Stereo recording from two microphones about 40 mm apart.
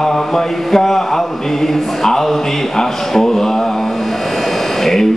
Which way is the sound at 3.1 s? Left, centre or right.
Centre.